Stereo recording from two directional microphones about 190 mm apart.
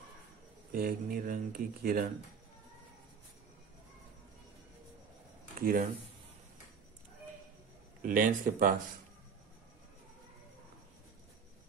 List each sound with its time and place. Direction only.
0.7 s speech: 50° right (ahead or behind)
5.6 s speech: 50° right (ahead or behind)
8.0 s speech: 45° right (ahead or behind)